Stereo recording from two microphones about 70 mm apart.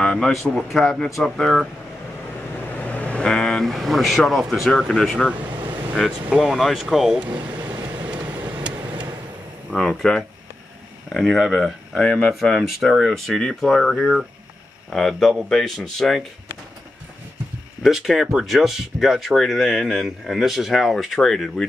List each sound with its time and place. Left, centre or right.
0.0 s speech: centre
2.7 s vehicle: left
3.2 s speech: centre
5.3 s vehicle: right
6.3 s speech: centre
7.2 s speech: right
7.7 s vehicle: right
9.7 s speech: centre
11.3 s speech: centre
11.9 s speech: centre
12.4 s speech: centre
17.8 s speech: centre